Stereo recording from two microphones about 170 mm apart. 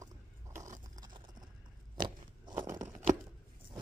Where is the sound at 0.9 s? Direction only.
25° right (ahead or behind).